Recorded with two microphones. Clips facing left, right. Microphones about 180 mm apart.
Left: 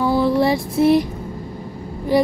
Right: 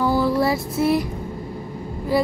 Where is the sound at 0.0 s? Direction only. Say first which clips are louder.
Left 2 dB; 20° left (ahead or behind).